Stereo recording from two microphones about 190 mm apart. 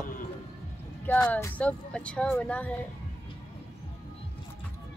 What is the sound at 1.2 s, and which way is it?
Speech, 10° left (ahead or behind).